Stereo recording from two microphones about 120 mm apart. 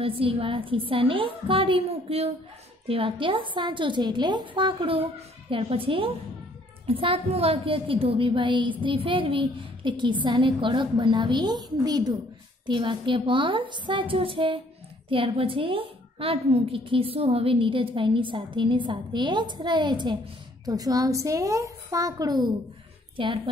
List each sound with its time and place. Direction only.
0.0 s a woman's voice: 50° right (ahead or behind); by 22.5 s 30° right (ahead or behind)
23.1 s a woman's voice: 45° right (ahead or behind)